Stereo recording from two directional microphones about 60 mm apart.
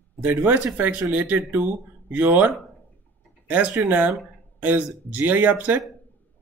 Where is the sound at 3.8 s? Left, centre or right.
Right.